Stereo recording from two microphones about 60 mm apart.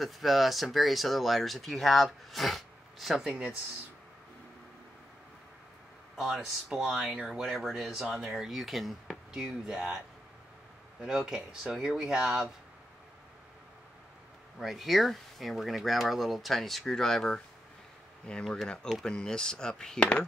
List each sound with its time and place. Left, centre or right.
0.0 s speech: centre
6.1 s speech: centre
9.3 s speech: centre
11.0 s speech: centre
14.6 s speech: centre
18.5 s speech: centre